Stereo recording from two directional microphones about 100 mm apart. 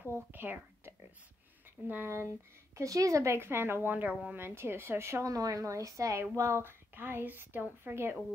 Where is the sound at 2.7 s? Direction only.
35° right (ahead or behind).